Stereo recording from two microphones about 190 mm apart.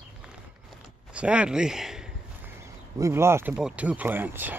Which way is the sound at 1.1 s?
5° right (ahead or behind).